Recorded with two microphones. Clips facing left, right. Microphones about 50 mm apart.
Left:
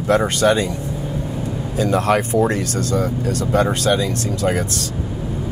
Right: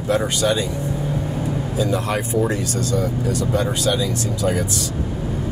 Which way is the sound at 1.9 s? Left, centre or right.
Left.